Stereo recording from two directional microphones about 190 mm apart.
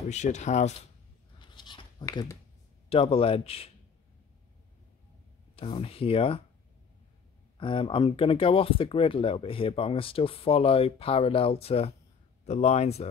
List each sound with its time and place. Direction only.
0.1 s speech: 40° left (ahead or behind)
1.4 s a sound: 25° left (ahead or behind)
2.9 s speech: 30° left (ahead or behind)
5.6 s speech: 30° left (ahead or behind)
7.5 s speech: 25° left (ahead or behind)